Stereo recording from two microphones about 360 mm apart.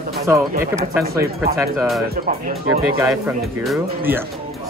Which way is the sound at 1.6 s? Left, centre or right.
Centre.